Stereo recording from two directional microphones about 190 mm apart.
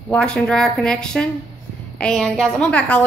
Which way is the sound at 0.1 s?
5° left (ahead or behind).